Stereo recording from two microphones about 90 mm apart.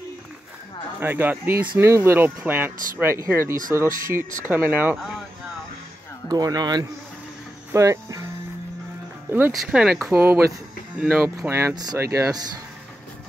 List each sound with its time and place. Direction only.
0.9 s speech: 25° right (ahead or behind)
4.9 s speech: 5° right (ahead or behind)
6.2 s speech: 45° right (ahead or behind)
7.7 s speech: 35° right (ahead or behind)
9.5 s speech: 5° right (ahead or behind)
10.1 s speech: 25° right (ahead or behind)
11.2 s speech: 30° right (ahead or behind)
11.7 s speech: 45° right (ahead or behind)
12.0 s speech: 35° right (ahead or behind)